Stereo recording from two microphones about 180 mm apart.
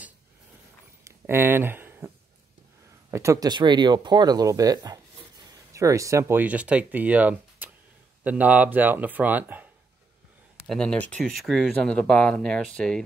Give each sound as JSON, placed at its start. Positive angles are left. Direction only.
{"t": 1.0, "sound": "a sound", "side_deg": -10}
{"t": 3.1, "sound": "speech", "side_deg": -15}
{"t": 10.6, "sound": "speech", "side_deg": 0}